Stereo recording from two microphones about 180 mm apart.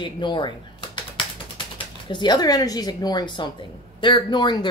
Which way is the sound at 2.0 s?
25° left (ahead or behind).